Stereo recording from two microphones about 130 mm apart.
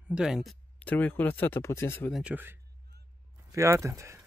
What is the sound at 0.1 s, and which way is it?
Speech, 5° right (ahead or behind).